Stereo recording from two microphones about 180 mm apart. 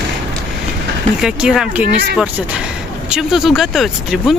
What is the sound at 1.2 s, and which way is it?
Speech, 5° right (ahead or behind).